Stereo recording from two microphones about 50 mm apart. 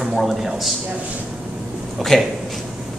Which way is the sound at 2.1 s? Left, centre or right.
Centre.